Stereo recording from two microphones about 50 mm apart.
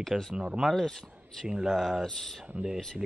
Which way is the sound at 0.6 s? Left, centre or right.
Centre.